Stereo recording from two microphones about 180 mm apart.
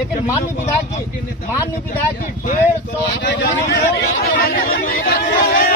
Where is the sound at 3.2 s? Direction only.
70° left (ahead or behind).